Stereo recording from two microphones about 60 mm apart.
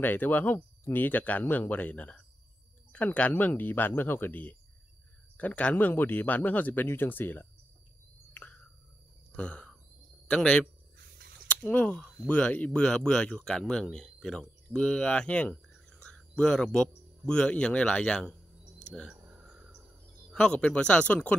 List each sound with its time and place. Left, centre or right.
0.0 s speech: left
5.6 s speech: left
8.3 s a sound: left
10.3 s speech: left
19.2 s cricket: centre
20.3 s speech: centre